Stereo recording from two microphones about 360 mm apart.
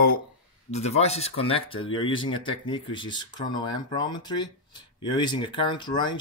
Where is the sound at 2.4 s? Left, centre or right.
Centre.